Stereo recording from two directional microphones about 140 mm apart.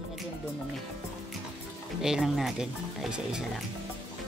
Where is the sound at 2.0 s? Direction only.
5° right (ahead or behind).